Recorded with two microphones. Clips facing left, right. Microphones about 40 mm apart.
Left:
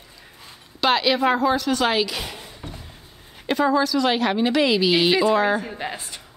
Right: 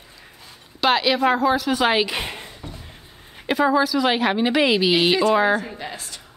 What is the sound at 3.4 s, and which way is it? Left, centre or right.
A woman's voice, centre.